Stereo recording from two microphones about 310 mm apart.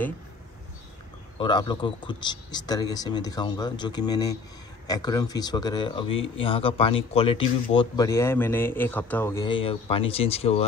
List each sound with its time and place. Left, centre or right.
1.4 s speech: centre
6.1 s speech: left
6.4 s speech: centre